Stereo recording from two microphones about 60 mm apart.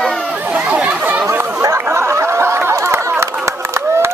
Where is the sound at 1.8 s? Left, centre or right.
Right.